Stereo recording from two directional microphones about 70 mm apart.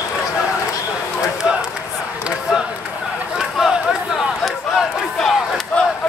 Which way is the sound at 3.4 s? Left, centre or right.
Centre.